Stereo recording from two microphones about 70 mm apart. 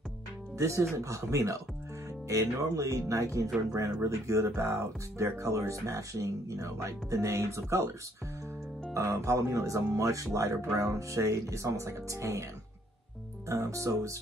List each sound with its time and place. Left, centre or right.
0.6 s speech: right
8.9 s speech: right
13.5 s speech: right